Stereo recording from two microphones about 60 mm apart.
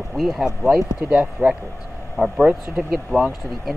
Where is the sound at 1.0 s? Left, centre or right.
Right.